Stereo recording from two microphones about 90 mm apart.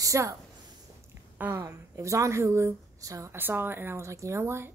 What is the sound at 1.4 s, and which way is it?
Speech, 30° right (ahead or behind).